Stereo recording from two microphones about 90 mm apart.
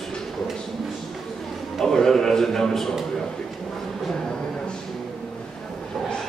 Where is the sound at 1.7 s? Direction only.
5° left (ahead or behind).